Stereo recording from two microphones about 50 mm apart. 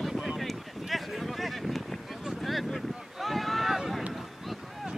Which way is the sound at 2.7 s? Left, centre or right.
Centre.